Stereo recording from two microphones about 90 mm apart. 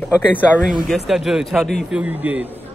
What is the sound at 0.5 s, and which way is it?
Speech, 10° right (ahead or behind).